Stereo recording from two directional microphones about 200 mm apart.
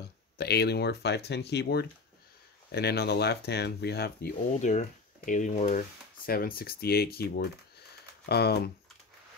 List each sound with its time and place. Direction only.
0.4 s speech: 55° left (ahead or behind)
4.5 s speech: 35° left (ahead or behind); by 8.5 s 55° left (ahead or behind)